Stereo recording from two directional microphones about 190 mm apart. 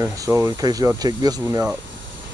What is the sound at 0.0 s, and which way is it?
Speech, 15° right (ahead or behind).